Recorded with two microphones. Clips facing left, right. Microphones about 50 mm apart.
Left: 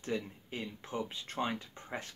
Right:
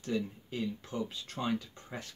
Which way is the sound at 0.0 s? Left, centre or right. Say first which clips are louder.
Right 2 dB; left.